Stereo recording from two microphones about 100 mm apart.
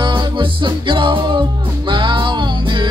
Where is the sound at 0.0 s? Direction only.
55° right (ahead or behind).